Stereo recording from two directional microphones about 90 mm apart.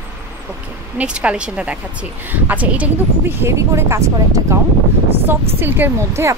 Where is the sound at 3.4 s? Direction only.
30° right (ahead or behind).